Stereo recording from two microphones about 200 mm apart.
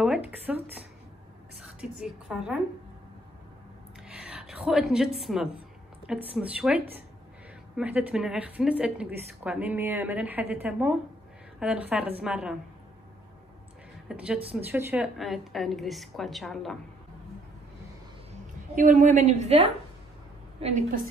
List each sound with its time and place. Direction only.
0.0 s a woman's voice: 5° right (ahead or behind)
4.1 s a woman's voice: 5° right (ahead or behind)
14.0 s a woman's voice: 5° right (ahead or behind)
15.1 s a woman's voice: centre (ahead or behind)
18.8 s a woman's voice: 40° right (ahead or behind)